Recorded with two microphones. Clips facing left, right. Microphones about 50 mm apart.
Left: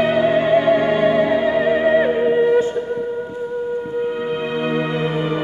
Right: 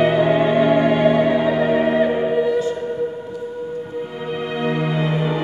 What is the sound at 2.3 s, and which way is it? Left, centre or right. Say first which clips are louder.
Music: left 5 dB; left.